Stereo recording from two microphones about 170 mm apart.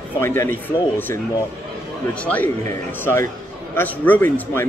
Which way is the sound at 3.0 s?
15° left (ahead or behind).